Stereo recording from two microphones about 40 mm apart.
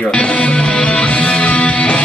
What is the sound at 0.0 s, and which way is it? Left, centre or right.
Music, left.